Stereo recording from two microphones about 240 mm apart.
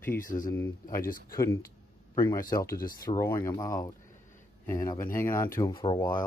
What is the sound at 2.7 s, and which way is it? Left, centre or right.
Speech, left.